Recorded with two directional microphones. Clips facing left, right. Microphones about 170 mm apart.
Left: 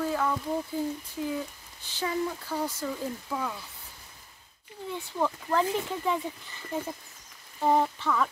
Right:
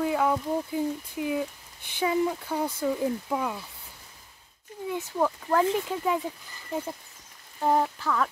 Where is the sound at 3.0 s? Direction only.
20° right (ahead or behind).